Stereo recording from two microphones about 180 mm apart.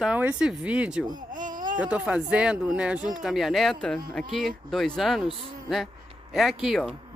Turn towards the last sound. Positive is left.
turn(degrees=0)  # may be behind; listen again after turning